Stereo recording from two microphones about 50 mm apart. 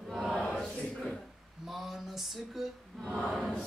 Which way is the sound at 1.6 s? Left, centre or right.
Centre.